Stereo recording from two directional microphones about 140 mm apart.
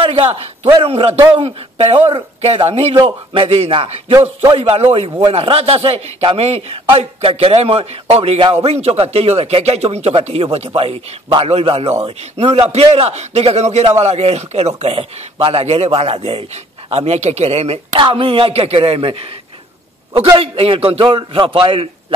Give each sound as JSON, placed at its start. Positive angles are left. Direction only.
{"t": 0.0, "sound": "a sound", "side_deg": -40}
{"t": 0.8, "sound": "a man's voice", "side_deg": -45}
{"t": 3.0, "sound": "speech", "side_deg": -30}
{"t": 3.4, "sound": "a man's voice", "side_deg": -45}
{"t": 20.3, "sound": "speech", "side_deg": -40}